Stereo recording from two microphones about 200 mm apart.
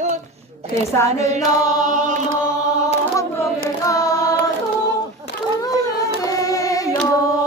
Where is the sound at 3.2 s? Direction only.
15° left (ahead or behind).